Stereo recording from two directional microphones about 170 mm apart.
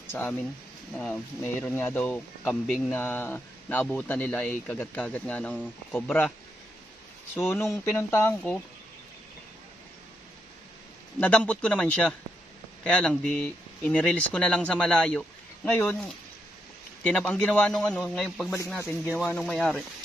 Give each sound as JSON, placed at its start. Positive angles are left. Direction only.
{"t": 0.0, "sound": "speech", "side_deg": 10}
{"t": 2.9, "sound": "speech", "side_deg": 10}
{"t": 7.3, "sound": "speech", "side_deg": 15}
{"t": 11.1, "sound": "speech", "side_deg": 10}
{"t": 17.0, "sound": "speech", "side_deg": 10}